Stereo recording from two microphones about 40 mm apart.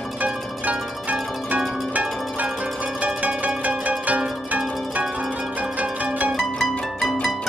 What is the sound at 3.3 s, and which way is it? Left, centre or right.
Zither, right.